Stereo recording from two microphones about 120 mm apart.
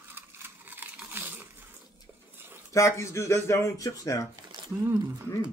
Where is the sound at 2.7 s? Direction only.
25° left (ahead or behind).